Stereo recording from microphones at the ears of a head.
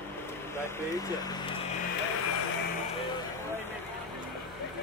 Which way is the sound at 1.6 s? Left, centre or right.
Left.